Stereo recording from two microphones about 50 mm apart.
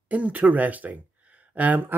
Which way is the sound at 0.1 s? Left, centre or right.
Right.